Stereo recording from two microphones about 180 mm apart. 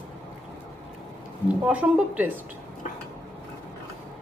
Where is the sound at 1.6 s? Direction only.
5° right (ahead or behind).